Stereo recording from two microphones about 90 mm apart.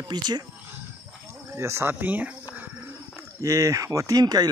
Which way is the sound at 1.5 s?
30° right (ahead or behind).